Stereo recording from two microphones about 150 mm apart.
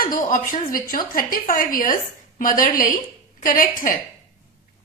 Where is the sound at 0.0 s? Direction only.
65° left (ahead or behind).